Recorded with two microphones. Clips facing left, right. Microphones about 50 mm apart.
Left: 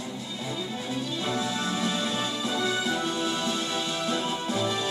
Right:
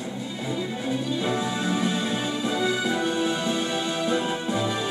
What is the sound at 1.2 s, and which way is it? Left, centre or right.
Music, centre.